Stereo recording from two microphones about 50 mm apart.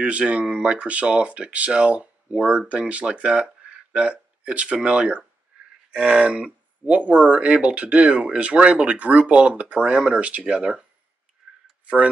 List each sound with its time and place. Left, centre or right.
0.0 s speech: right